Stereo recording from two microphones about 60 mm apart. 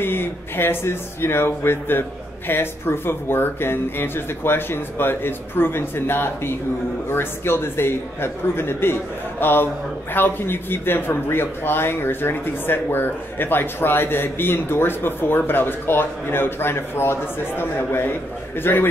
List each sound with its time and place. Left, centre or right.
0.0 s a man's voice: left